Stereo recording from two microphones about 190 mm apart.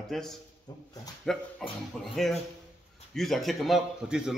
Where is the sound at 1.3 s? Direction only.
Centre (ahead or behind).